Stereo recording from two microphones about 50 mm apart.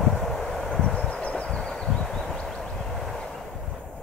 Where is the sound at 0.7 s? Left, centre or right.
Centre.